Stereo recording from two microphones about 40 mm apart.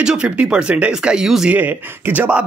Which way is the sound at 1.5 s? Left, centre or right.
Right.